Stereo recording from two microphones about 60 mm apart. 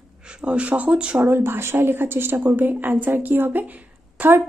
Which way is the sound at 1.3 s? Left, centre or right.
Right.